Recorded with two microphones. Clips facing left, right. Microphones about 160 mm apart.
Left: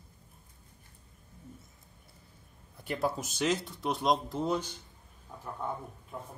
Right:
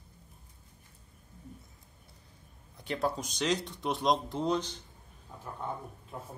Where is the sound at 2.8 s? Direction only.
5° left (ahead or behind).